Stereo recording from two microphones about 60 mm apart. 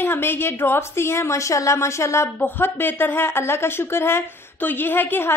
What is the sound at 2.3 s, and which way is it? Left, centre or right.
Speech, left.